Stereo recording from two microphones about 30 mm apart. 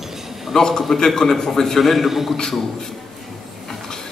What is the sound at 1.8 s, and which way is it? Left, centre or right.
Speech, centre.